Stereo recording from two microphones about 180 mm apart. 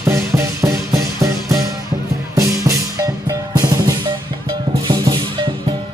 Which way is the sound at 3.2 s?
20° right (ahead or behind).